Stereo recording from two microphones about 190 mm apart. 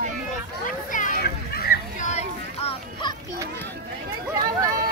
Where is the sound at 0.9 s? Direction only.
45° left (ahead or behind); by 3.2 s 30° left (ahead or behind).